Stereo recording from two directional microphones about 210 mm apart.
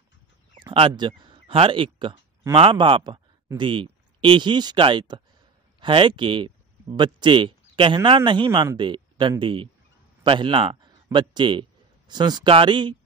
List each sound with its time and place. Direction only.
0.6 s speech: 25° right (ahead or behind)